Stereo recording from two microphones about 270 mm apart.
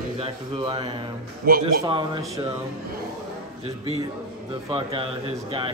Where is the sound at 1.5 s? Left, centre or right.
Right.